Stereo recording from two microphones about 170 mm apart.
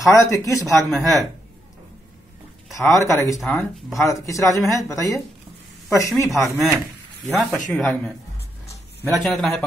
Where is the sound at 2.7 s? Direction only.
15° left (ahead or behind).